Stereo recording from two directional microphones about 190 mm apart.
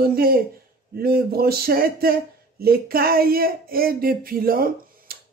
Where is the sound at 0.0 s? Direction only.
50° right (ahead or behind).